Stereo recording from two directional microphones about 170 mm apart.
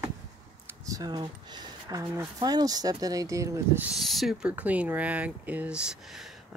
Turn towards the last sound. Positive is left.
turn(degrees=0)  # may be behind; listen again after turning